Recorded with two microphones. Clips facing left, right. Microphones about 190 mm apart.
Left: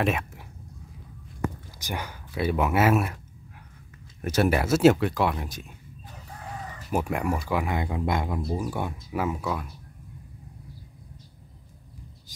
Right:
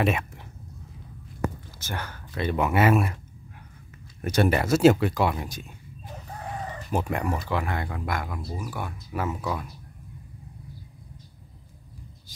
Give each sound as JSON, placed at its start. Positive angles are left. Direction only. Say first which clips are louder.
{"t": 0.0, "sound": "speech", "louder": "right 1 dB", "side_deg": 0}
{"t": 1.8, "sound": "speech", "louder": "left 1 dB", "side_deg": 15}
{"t": 4.2, "sound": "speech", "louder": "even", "side_deg": 5}
{"t": 6.9, "sound": "speech", "louder": "left 1 dB", "side_deg": 5}
{"t": 9.1, "sound": "speech", "louder": "even", "side_deg": 10}